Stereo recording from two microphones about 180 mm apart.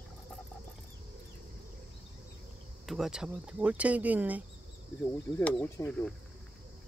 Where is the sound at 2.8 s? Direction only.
Centre (ahead or behind).